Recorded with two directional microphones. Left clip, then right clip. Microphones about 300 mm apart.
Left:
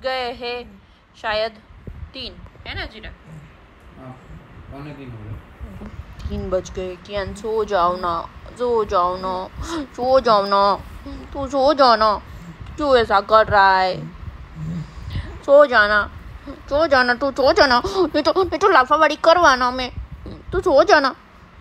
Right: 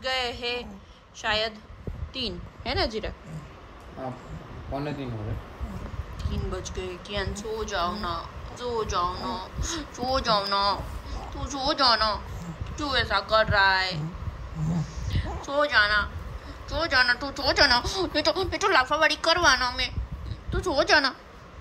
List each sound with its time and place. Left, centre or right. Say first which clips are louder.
0.0 s speech: left 4 dB; centre
6.2 s speech: left 12 dB; centre
14.8 s a sound: even; centre
16.6 s speech: left 7 dB; centre